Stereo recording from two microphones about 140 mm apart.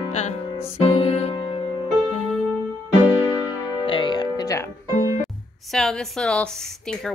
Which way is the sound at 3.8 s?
35° left (ahead or behind).